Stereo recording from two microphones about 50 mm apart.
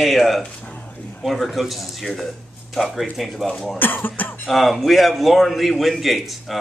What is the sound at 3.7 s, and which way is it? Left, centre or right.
Cough, left.